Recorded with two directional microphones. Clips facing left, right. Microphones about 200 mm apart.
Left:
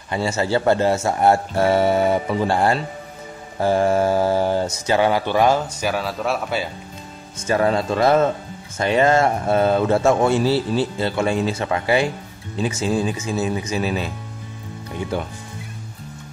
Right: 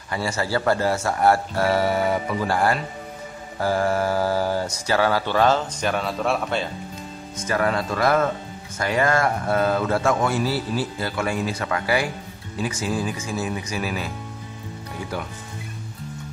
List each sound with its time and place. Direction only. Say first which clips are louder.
0.1 s speech: left 4 dB; 25° left (ahead or behind); by 6.7 s 5° left (ahead or behind)
7.3 s speech: left 4 dB; 25° left (ahead or behind)